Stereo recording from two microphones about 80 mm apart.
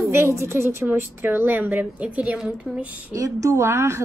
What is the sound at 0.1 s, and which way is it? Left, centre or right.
A woman's voice, right.